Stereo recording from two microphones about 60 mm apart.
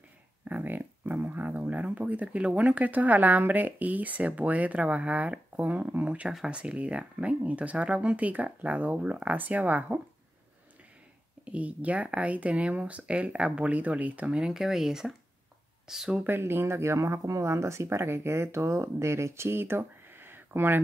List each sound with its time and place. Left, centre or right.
0.5 s speech: right
11.4 s speech: right
14.3 s speech: centre
16.3 s speech: right